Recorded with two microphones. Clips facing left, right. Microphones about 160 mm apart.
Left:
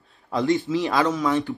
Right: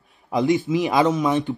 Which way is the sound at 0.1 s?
15° right (ahead or behind).